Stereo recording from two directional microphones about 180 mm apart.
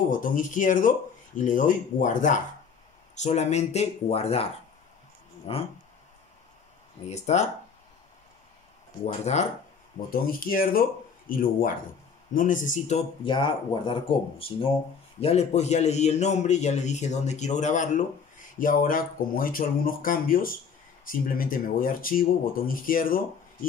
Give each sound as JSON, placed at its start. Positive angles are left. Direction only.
{"t": 0.1, "sound": "a man's voice", "side_deg": 45}
{"t": 7.1, "sound": "a man's voice", "side_deg": 40}
{"t": 9.0, "sound": "a man's voice", "side_deg": 40}
{"t": 10.4, "sound": "a man's voice", "side_deg": 50}